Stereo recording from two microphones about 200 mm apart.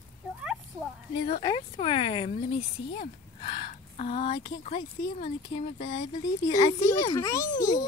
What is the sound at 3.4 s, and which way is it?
A child's voice, 30° left (ahead or behind).